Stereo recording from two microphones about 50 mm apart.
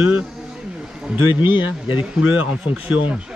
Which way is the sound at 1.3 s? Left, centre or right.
Right.